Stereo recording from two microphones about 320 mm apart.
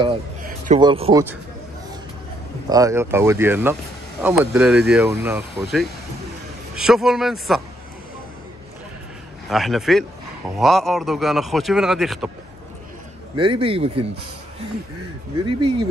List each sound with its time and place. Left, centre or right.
0.0 s a sound: right
0.7 s speech: centre
2.7 s speech: centre
9.5 s speech: centre
13.4 s speech: centre